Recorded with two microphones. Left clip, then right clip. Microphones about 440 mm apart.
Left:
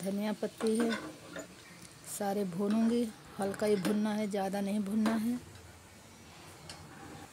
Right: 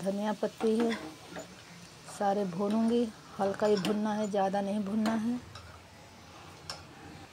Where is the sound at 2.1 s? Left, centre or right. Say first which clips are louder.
Right 5 dB; left.